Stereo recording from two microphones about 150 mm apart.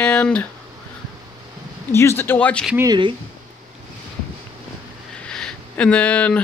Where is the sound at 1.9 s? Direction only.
15° left (ahead or behind).